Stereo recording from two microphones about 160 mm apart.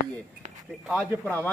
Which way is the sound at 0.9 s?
5° left (ahead or behind).